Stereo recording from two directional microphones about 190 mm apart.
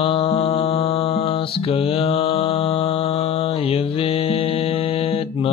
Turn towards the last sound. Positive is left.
turn(degrees=30)  # may be behind; listen again after turning